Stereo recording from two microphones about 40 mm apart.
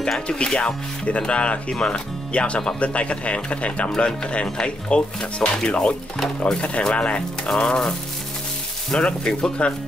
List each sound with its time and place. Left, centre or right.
0.3 s speech: centre
9.0 s speech: left